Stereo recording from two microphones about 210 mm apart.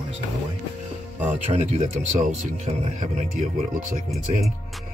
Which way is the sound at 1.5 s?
30° right (ahead or behind).